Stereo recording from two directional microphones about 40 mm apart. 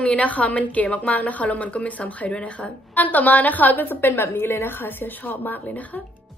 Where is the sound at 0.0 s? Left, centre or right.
Left.